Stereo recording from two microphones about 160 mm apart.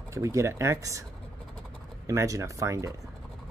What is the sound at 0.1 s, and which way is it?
Speech, 20° right (ahead or behind).